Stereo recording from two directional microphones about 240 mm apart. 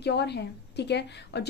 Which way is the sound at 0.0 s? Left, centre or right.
Left.